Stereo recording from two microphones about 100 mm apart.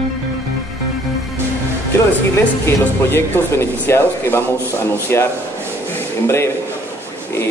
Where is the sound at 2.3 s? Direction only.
25° left (ahead or behind).